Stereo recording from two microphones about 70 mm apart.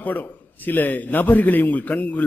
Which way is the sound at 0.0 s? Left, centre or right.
Left.